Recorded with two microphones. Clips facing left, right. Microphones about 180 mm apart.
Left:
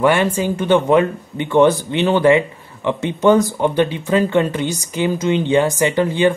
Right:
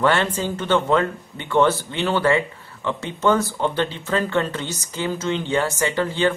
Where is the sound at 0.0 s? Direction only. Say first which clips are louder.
Left 5 dB; 10° left (ahead or behind).